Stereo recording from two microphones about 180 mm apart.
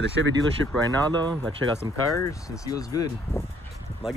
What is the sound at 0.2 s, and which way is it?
Speech, 90° right.